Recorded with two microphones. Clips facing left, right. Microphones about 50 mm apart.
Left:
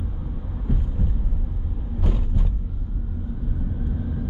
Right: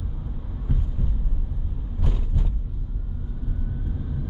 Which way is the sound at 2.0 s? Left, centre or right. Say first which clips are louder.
Left 2 dB; centre.